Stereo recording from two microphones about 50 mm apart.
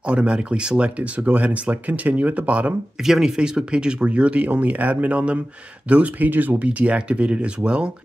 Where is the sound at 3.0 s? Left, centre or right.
Centre.